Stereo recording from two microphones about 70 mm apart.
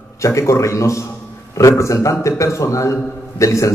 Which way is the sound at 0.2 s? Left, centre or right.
Left.